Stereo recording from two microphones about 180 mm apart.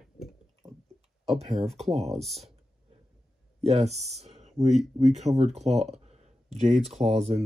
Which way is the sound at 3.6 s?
35° right (ahead or behind).